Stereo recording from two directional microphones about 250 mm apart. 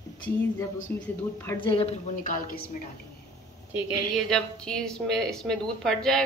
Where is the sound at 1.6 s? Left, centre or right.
Left.